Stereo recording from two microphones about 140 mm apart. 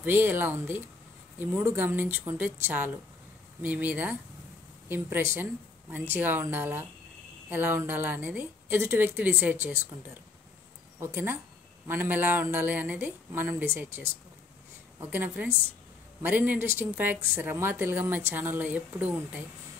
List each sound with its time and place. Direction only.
0.0 s a woman's voice: 15° right (ahead or behind)
11.0 s a woman's voice: 20° right (ahead or behind)
15.0 s a woman's voice: 10° right (ahead or behind)